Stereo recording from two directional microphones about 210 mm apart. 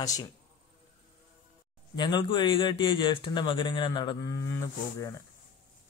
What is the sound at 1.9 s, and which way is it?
Speech, 20° left (ahead or behind).